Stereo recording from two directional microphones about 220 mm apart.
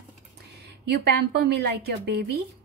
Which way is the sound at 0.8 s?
45° right (ahead or behind).